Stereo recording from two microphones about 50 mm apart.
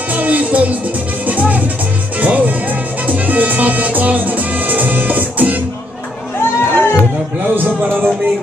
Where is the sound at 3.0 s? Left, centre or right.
Right.